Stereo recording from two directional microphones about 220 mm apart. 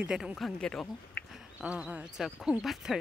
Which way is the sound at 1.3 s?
5° right (ahead or behind).